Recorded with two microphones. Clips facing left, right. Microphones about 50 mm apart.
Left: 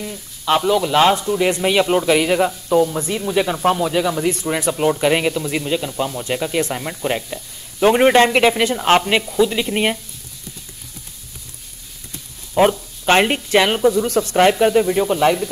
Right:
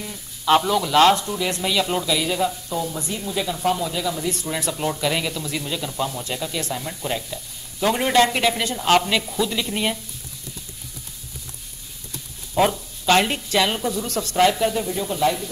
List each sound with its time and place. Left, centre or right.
0.0 s sizzle: centre
0.7 s speech: centre
1.6 s a man's voice: left
2.0 s speech: left
4.3 s speech: left
6.3 s a man's voice: left
9.4 s speech: left
12.5 s speech: left
13.7 s speech: left
14.3 s speech: left